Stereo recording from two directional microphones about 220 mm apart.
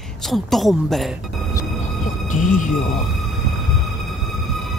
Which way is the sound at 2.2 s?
35° left (ahead or behind).